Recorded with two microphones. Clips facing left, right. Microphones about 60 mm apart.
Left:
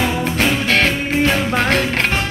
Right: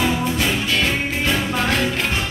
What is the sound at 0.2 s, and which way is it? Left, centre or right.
Music, left.